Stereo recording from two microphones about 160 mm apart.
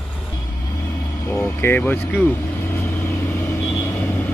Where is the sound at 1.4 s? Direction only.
10° left (ahead or behind).